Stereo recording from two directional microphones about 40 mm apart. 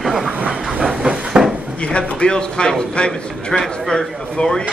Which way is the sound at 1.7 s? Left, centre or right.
Left.